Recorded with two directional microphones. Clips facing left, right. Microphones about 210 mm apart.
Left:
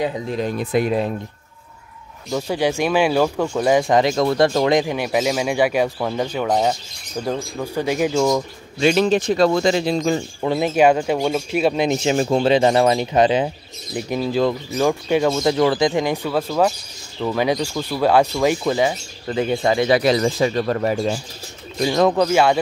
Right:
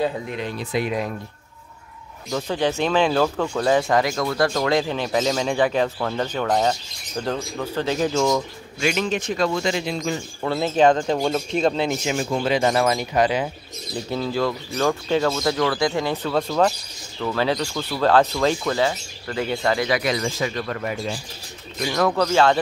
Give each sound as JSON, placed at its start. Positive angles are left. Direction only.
{"t": 0.6, "sound": "speech", "side_deg": 55}
{"t": 0.8, "sound": "a man's voice", "side_deg": 30}
{"t": 2.3, "sound": "speech", "side_deg": 10}
{"t": 8.7, "sound": "a man's voice", "side_deg": 35}
{"t": 10.4, "sound": "speech", "side_deg": 15}
{"t": 12.0, "sound": "speech", "side_deg": 30}
{"t": 19.9, "sound": "a man's voice", "side_deg": 30}
{"t": 21.7, "sound": "speech", "side_deg": 25}
{"t": 22.2, "sound": "speech", "side_deg": 10}